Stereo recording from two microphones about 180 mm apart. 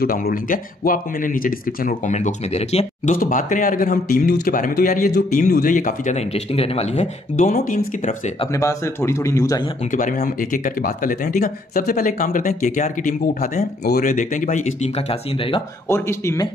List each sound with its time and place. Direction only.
0.0 s speech: 55° left (ahead or behind); by 3.2 s 35° left (ahead or behind)
3.2 s speech: 45° left (ahead or behind)
8.5 s a man's voice: 15° left (ahead or behind)
9.9 s speech: 50° left (ahead or behind); by 15.6 s 30° left (ahead or behind)
15.9 s a man's voice: 15° left (ahead or behind)